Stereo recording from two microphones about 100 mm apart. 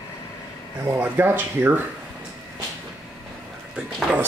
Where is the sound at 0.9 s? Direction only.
20° right (ahead or behind).